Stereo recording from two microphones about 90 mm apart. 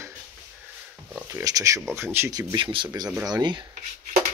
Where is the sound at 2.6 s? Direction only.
70° right (ahead or behind).